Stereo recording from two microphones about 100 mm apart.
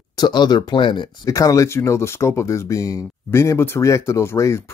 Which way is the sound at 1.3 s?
35° left (ahead or behind).